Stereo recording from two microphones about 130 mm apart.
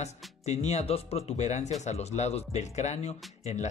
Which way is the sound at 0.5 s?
60° left (ahead or behind).